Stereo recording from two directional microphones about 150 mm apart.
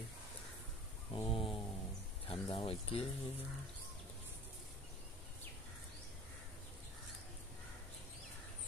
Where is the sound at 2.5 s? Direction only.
40° left (ahead or behind).